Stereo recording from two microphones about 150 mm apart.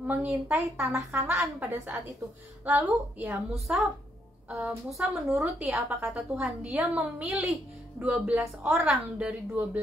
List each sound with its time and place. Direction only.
0.0 s a woman's voice: 10° right (ahead or behind)
1.7 s a woman's voice: 20° right (ahead or behind); by 5.1 s centre (ahead or behind)
5.3 s a woman's voice: 15° right (ahead or behind)
6.0 s a woman's voice: 5° right (ahead or behind)